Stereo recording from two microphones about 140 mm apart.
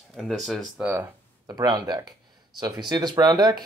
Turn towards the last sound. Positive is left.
turn(degrees=-30)  # may be behind; listen again after turning